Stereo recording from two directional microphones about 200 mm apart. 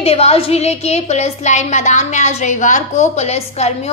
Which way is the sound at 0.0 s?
30° left (ahead or behind).